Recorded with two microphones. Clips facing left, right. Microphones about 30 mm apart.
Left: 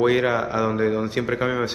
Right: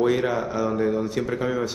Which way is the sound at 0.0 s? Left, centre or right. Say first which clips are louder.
Left 2 dB; left.